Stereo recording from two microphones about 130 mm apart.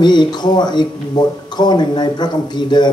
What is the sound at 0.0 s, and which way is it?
Speech, 35° left (ahead or behind).